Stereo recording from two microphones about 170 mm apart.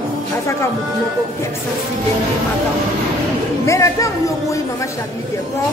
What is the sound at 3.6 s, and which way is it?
Speech, 15° left (ahead or behind).